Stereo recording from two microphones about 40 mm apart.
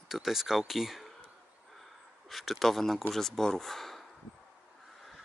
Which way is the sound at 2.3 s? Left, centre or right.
Centre.